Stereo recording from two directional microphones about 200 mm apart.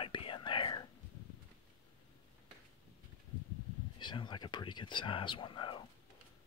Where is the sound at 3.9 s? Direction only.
25° left (ahead or behind).